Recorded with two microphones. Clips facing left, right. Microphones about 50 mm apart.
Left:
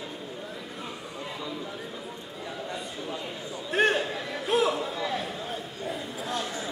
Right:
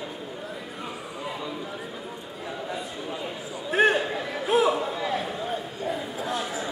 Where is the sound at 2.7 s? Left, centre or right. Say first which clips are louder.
Right 2 dB; centre.